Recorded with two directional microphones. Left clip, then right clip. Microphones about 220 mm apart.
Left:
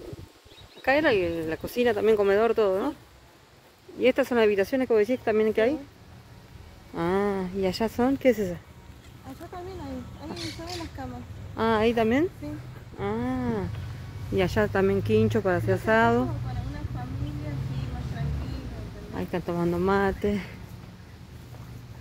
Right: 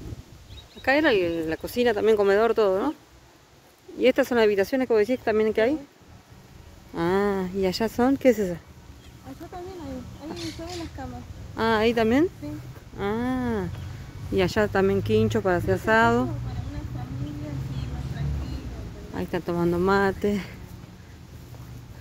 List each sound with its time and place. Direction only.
0.8 s speech: centre (ahead or behind)
4.0 s speech: 5° right (ahead or behind)
6.9 s speech: 10° right (ahead or behind)
11.0 s a woman's voice: 55° left (ahead or behind)
11.5 s speech: 5° right (ahead or behind)
19.1 s speech: 5° right (ahead or behind)